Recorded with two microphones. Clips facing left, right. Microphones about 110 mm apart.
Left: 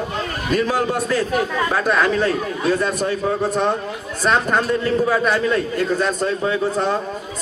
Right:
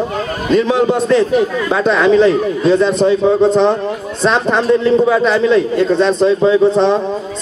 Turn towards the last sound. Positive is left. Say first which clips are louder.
# right 9 dB
turn(degrees=-25)  # may be behind; listen again after turning